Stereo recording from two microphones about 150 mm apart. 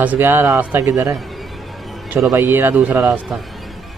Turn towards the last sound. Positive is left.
turn(degrees=0)  # may be behind; listen again after turning